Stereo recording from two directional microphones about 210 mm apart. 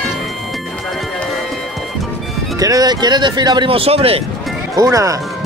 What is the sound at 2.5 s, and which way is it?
Speech, 15° right (ahead or behind).